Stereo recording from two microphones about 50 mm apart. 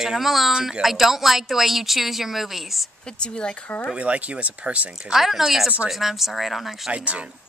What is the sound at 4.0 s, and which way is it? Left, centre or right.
Speech, right.